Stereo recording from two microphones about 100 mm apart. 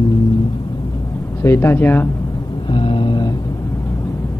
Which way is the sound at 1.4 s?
25° left (ahead or behind).